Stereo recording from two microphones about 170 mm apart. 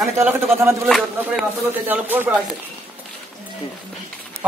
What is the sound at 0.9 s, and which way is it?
Speech, centre (ahead or behind).